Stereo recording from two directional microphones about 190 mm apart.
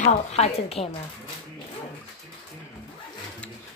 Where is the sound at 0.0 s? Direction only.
35° left (ahead or behind).